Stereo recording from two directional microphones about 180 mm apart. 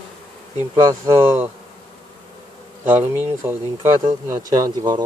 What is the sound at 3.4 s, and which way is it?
Speech, 10° right (ahead or behind).